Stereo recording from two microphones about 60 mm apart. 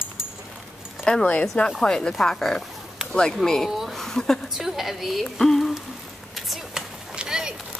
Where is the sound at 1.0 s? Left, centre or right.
Centre.